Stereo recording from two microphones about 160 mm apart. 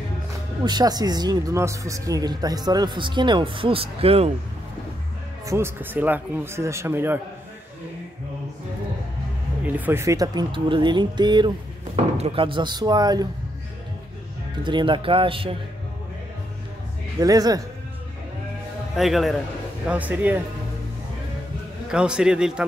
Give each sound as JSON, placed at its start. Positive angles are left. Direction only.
{"t": 0.7, "sound": "speech", "side_deg": -25}
{"t": 5.5, "sound": "a man's voice", "side_deg": -15}
{"t": 9.7, "sound": "speech", "side_deg": -10}
{"t": 14.6, "sound": "speech", "side_deg": -30}
{"t": 17.2, "sound": "speech", "side_deg": -25}
{"t": 18.9, "sound": "a man's voice", "side_deg": 0}
{"t": 21.9, "sound": "a man's voice", "side_deg": -5}